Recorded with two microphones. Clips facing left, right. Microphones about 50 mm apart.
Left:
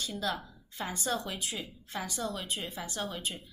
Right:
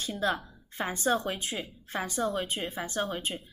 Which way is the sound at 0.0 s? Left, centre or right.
Right.